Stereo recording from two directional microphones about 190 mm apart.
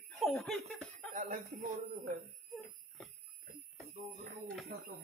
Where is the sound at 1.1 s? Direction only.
40° right (ahead or behind).